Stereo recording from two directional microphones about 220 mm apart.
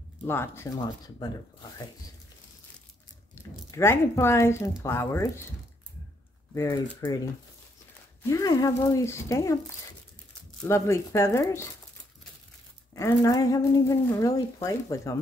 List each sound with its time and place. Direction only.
0.2 s a woman's voice: 10° left (ahead or behind)
3.3 s a woman's voice: 10° left (ahead or behind)
6.5 s a woman's voice: 15° left (ahead or behind)
8.2 s a woman's voice: 15° left (ahead or behind)
10.6 s a woman's voice: 10° left (ahead or behind)
12.9 s a woman's voice: 15° left (ahead or behind)